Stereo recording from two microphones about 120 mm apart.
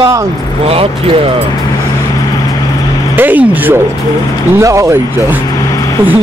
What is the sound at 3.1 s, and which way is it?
Speech, 15° right (ahead or behind).